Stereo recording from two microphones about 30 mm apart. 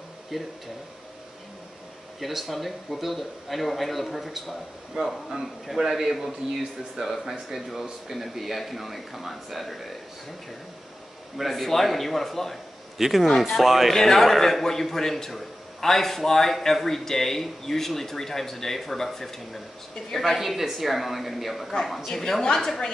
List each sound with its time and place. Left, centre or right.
0.3 s speech: centre
2.1 s speech: centre
5.0 s a man's voice: right
6.4 s speech: centre
11.3 s speech: centre
12.9 s a man's voice: centre
13.9 s a man's voice: centre
20.3 s a man's voice: centre